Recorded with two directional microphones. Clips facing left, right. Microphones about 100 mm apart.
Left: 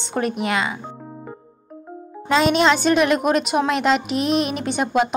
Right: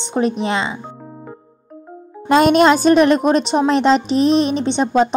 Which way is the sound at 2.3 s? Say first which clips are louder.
Right 5 dB; 50° right (ahead or behind).